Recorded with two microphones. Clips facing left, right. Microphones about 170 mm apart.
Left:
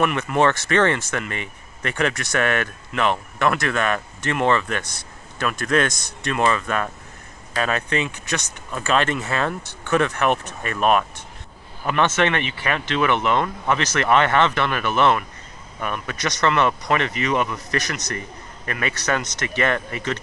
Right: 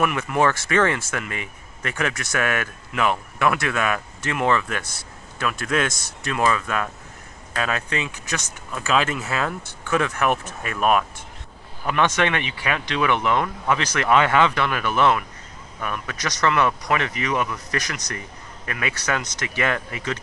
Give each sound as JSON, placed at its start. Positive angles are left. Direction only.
{"t": 0.0, "sound": "speech", "side_deg": -5}